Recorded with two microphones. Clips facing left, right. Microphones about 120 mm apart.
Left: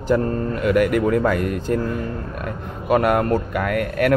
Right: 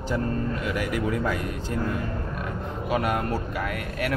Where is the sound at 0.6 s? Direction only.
55° left (ahead or behind).